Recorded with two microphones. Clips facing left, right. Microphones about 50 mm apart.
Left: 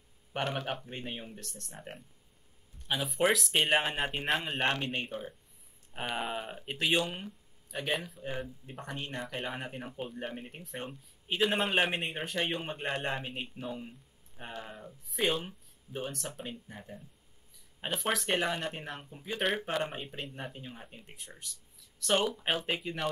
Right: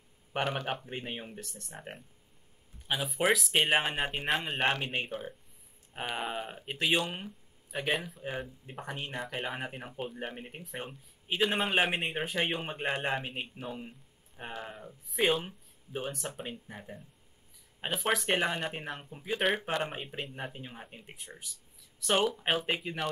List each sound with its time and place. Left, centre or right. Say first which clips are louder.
0.3 s speech: right 2 dB; centre
0.8 s speech: right 2 dB; centre
2.9 s speech: even; centre